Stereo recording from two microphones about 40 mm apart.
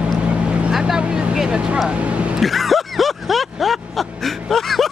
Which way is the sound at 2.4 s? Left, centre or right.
Centre.